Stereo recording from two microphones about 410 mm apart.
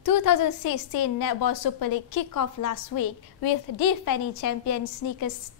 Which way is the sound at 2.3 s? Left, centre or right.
Left.